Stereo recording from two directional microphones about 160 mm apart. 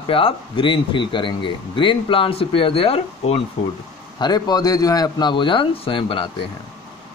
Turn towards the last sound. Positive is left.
turn(degrees=35)  # may be behind; listen again after turning